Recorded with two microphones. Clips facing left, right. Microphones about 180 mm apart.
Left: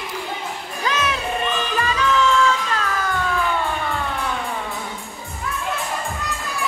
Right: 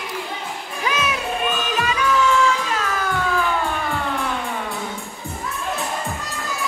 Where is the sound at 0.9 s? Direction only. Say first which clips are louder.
Even; 10° right (ahead or behind).